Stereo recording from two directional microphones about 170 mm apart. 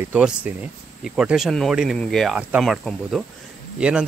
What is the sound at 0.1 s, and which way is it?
Speech, 5° right (ahead or behind).